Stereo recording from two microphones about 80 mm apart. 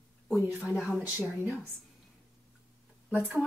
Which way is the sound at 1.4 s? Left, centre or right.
Right.